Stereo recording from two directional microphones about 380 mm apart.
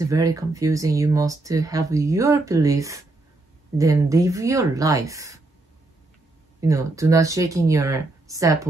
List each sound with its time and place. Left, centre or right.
0.0 s speech: centre
6.6 s speech: centre